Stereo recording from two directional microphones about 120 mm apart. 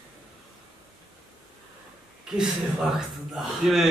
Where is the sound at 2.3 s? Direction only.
5° right (ahead or behind).